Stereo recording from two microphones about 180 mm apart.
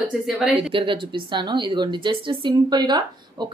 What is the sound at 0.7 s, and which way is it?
A woman's voice, 30° right (ahead or behind).